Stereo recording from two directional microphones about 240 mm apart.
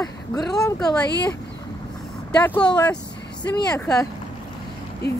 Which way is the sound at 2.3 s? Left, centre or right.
Centre.